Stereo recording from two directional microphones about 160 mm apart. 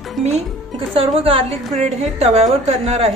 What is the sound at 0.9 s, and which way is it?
A woman's voice, 35° right (ahead or behind).